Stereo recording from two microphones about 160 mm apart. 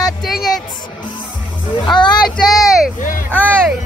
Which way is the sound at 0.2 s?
Centre (ahead or behind).